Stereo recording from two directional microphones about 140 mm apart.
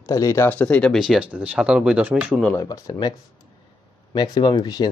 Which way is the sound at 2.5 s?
25° left (ahead or behind).